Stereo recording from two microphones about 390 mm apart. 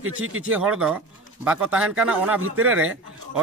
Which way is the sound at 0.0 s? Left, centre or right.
Right.